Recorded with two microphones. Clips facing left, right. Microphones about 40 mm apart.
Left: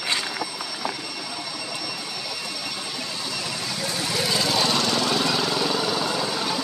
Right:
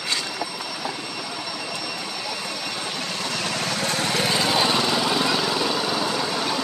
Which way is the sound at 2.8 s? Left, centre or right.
Right.